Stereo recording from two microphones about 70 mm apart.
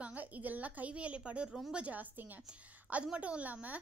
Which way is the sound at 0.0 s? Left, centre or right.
Right.